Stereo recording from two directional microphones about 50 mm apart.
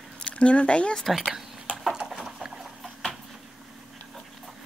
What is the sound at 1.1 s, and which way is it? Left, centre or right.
Speech, centre.